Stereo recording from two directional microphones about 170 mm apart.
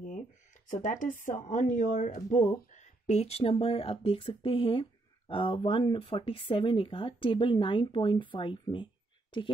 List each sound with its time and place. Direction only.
0.7 s speech: 50° left (ahead or behind); by 8.8 s 30° left (ahead or behind)